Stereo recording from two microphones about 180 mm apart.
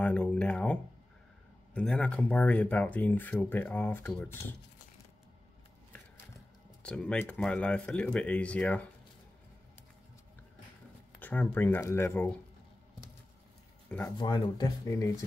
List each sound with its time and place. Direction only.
0.0 s speech: 5° left (ahead or behind)
6.8 s speech: 5° left (ahead or behind)
11.1 s speech: 10° left (ahead or behind)
13.8 s speech: 10° left (ahead or behind)
14.1 s speech: 25° left (ahead or behind)